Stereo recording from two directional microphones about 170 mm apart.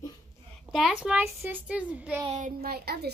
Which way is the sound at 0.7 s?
Centre (ahead or behind).